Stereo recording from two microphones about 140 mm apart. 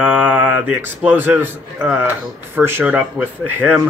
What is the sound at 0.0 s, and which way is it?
A man's voice, 10° right (ahead or behind).